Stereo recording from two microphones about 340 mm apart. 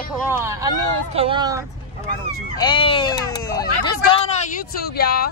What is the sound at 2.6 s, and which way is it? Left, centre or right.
Speech, centre.